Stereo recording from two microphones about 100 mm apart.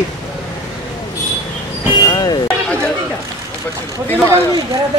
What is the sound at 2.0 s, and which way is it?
Vehicle, 45° left (ahead or behind).